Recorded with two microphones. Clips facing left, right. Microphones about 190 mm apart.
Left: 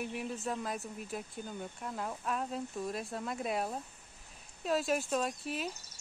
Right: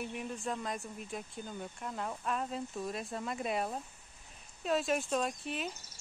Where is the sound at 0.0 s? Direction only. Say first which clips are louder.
Left 1 dB; 5° left (ahead or behind).